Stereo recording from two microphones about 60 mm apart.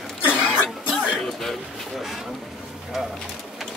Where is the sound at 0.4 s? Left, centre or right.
Centre.